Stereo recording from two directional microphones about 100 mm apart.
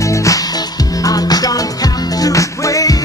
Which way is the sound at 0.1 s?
30° left (ahead or behind).